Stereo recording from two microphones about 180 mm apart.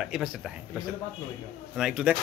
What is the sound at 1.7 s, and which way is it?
Speech, 5° right (ahead or behind).